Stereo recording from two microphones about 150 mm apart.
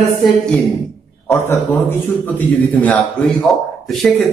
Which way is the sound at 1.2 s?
15° left (ahead or behind).